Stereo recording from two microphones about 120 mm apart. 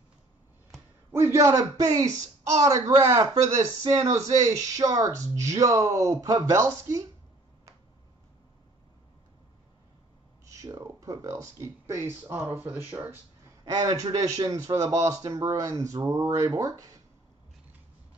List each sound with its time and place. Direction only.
1.2 s speech: 25° right (ahead or behind)
10.4 s speech: 25° right (ahead or behind)
13.7 s speech: 30° right (ahead or behind)